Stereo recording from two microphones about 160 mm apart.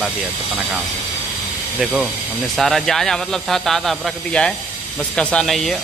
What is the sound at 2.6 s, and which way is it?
Speech, centre (ahead or behind).